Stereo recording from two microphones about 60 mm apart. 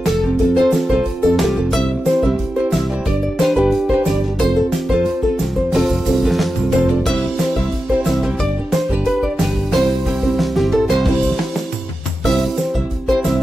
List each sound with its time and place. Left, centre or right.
0.0 s music: centre
3.3 s music: centre
10.3 s music: centre